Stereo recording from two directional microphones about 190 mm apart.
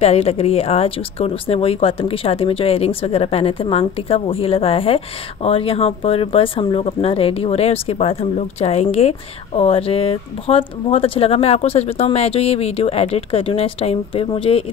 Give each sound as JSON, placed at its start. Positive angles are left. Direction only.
{"t": 0.0, "sound": "speech", "side_deg": 35}